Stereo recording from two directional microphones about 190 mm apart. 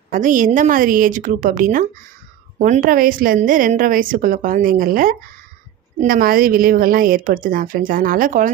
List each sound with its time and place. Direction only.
0.1 s speech: 45° right (ahead or behind)